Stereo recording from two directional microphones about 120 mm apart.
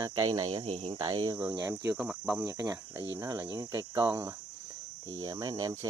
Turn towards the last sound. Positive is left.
turn(degrees=-30)  # may be behind; listen again after turning